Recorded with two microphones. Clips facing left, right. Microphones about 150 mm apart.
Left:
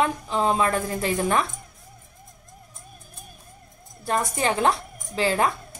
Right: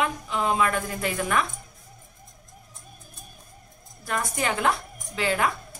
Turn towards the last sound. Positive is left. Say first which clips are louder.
# left 3 dB
turn(degrees=35)  # may be behind; listen again after turning